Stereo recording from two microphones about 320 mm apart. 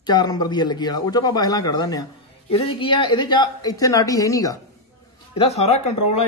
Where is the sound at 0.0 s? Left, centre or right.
Centre.